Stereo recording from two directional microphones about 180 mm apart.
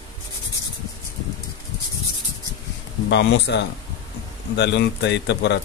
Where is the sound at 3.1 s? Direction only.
75° left (ahead or behind).